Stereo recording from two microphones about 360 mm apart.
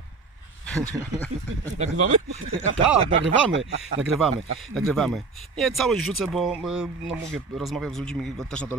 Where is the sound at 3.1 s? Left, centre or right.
Right.